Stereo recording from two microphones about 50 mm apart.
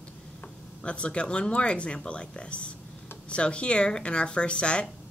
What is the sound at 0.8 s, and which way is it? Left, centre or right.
Speech, left.